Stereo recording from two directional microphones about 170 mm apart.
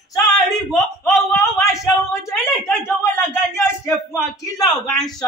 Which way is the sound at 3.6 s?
15° left (ahead or behind).